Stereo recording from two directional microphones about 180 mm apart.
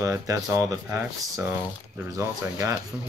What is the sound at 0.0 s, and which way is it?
Speech, 15° right (ahead or behind).